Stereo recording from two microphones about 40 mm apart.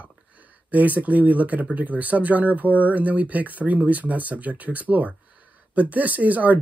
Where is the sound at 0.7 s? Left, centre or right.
Right.